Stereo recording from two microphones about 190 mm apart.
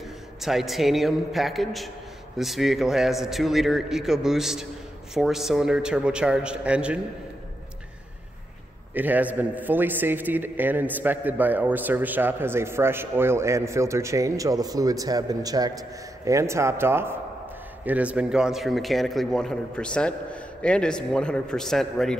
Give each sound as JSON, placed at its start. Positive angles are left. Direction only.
{"t": 0.4, "sound": "speech", "side_deg": 0}
{"t": 8.9, "sound": "a man's voice", "side_deg": -10}